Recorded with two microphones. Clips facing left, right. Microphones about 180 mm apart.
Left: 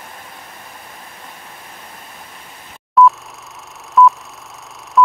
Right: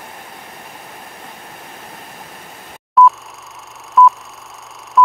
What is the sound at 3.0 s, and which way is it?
Telephone dialing, centre (ahead or behind).